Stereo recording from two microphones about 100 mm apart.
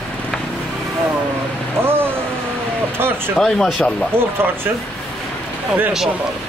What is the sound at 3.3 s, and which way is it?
Speech, centre (ahead or behind).